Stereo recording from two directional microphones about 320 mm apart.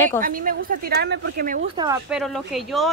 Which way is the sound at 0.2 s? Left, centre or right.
Right.